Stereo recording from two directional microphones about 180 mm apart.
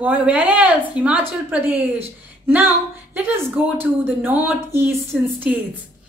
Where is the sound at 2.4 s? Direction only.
10° right (ahead or behind).